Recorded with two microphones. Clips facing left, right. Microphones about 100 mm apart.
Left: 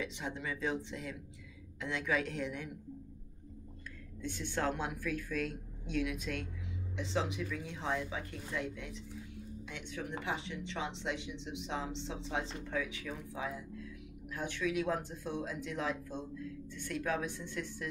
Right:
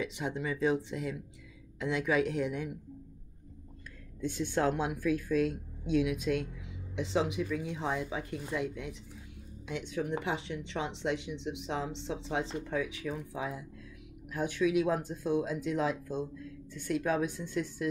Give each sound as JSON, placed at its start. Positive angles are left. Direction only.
{"t": 0.0, "sound": "a woman's voice", "side_deg": -10}
{"t": 4.2, "sound": "a woman's voice", "side_deg": -15}
{"t": 12.3, "sound": "a woman's voice", "side_deg": -10}